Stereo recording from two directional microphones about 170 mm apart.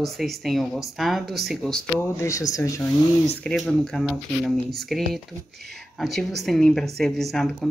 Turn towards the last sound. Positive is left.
turn(degrees=0)  # may be behind; listen again after turning